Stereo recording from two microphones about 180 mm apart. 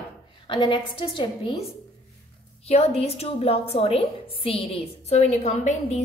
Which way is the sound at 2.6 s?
35° left (ahead or behind).